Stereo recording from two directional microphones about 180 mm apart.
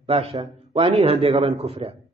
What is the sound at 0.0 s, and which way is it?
A man's voice, 35° right (ahead or behind).